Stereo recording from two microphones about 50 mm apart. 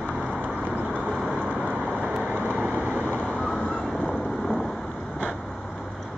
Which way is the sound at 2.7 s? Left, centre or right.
Right.